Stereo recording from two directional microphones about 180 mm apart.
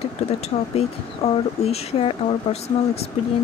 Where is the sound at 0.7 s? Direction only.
35° left (ahead or behind).